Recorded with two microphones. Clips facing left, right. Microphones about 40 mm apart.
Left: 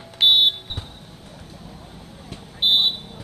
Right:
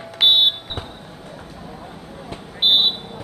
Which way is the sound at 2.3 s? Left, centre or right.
Right.